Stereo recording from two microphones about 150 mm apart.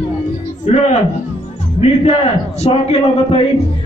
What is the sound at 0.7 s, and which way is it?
Speech, 45° left (ahead or behind).